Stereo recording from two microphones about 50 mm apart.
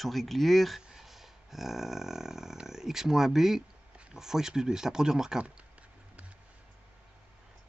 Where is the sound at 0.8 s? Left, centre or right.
Centre.